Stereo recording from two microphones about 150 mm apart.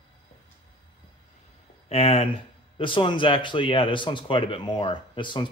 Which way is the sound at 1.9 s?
40° left (ahead or behind).